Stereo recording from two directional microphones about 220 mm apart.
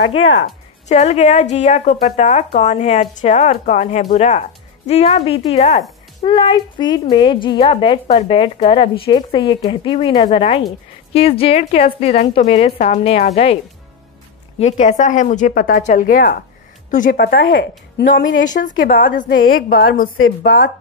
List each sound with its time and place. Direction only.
0.1 s speech: 60° left (ahead or behind)
0.8 s a woman's voice: 30° left (ahead or behind)
14.6 s a woman's voice: 30° left (ahead or behind)
17.4 s speech: 60° left (ahead or behind)
18.6 s a woman's voice: 50° left (ahead or behind)
19.3 s a woman's voice: 70° left (ahead or behind)